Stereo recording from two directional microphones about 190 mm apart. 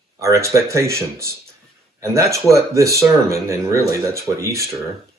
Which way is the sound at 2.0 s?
15° right (ahead or behind).